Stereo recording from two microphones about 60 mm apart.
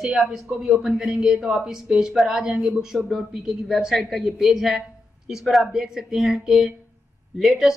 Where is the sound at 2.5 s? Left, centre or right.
Right.